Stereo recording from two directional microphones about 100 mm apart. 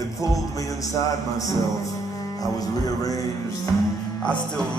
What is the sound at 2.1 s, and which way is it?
Music, 35° left (ahead or behind).